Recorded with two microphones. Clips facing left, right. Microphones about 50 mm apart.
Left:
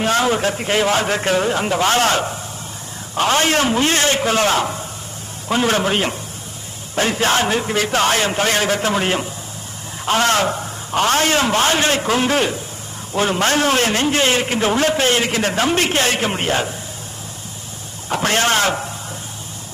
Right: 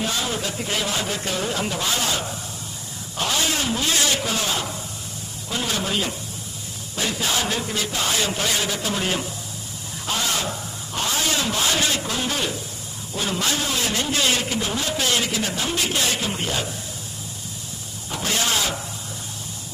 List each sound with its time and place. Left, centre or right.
0.0 s a man's voice: left
4.4 s a man's voice: left
10.0 s a man's voice: left
15.0 s a man's voice: left
18.1 s a man's voice: left